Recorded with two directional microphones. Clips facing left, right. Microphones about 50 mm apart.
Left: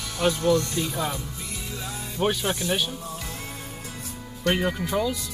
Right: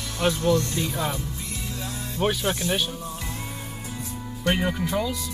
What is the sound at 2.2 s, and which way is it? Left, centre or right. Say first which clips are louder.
Speech: even; centre.